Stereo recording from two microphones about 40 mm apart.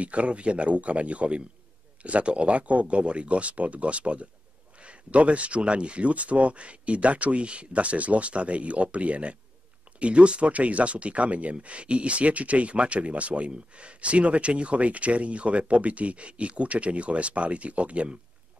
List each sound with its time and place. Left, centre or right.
0.0 s speech: right